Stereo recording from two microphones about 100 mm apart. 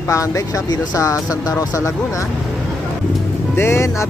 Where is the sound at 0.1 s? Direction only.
35° left (ahead or behind).